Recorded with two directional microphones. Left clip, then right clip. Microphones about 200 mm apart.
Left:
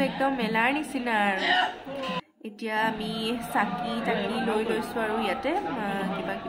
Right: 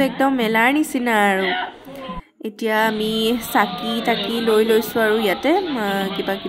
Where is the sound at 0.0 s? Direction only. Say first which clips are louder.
Right 8 dB; 30° right (ahead or behind).